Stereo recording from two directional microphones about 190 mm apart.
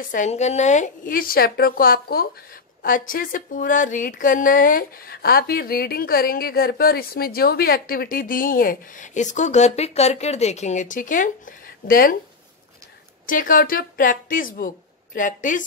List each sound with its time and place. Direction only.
0.1 s speech: 40° left (ahead or behind)
13.3 s speech: 45° left (ahead or behind)